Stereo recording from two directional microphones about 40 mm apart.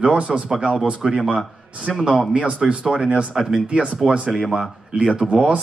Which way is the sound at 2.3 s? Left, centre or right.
Right.